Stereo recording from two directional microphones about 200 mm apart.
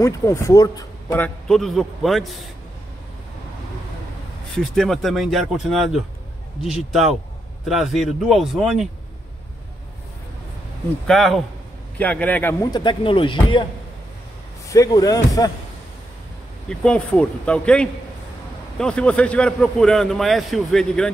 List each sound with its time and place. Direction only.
0.0 s speech: 15° left (ahead or behind)
1.2 s a man's voice: centre (ahead or behind)
4.6 s a man's voice: centre (ahead or behind)
11.1 s a man's voice: centre (ahead or behind)
12.7 s speech: 25° left (ahead or behind)
14.7 s speech: 15° left (ahead or behind)
16.6 s a man's voice: 5° left (ahead or behind)